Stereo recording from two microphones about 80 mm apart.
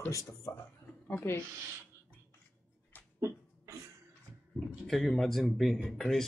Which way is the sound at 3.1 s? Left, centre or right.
Right.